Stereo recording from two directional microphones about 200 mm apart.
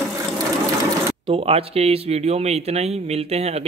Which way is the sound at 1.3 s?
30° right (ahead or behind).